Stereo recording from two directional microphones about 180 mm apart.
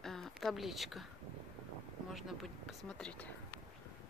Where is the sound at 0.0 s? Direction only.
Centre (ahead or behind).